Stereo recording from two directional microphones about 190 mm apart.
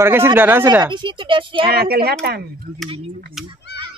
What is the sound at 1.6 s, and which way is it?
Speech, 55° right (ahead or behind).